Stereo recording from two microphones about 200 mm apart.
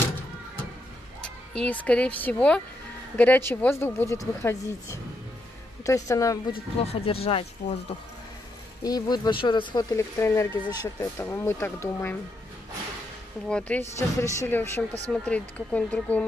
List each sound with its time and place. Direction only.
1.6 s speech: 5° left (ahead or behind)
5.9 s speech: 15° left (ahead or behind)
6.8 s speech: 30° left (ahead or behind)
8.8 s speech: 20° left (ahead or behind)
13.5 s speech: 5° left (ahead or behind)